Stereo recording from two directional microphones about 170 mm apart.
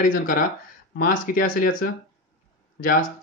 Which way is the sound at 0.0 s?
55° left (ahead or behind).